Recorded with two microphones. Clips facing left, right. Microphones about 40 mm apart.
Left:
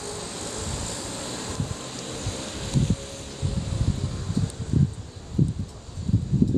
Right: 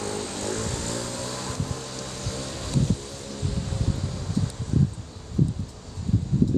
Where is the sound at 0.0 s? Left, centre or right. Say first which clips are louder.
Right 4 dB; right.